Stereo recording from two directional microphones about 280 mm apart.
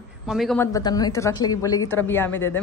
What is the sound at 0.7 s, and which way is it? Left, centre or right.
Speech, centre.